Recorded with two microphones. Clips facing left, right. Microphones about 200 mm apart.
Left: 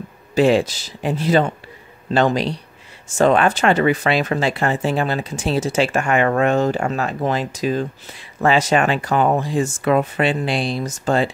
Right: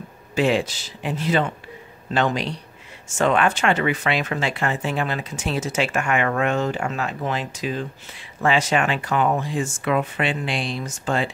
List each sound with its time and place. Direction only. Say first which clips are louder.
0.3 s speech: left 5 dB; 35° left (ahead or behind)